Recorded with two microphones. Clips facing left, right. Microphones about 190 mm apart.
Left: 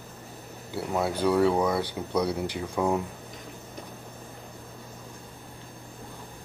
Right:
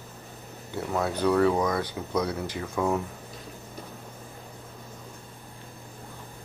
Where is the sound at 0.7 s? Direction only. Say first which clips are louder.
Even; 10° left (ahead or behind).